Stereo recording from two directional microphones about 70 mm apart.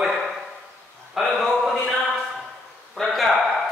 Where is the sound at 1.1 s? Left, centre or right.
Centre.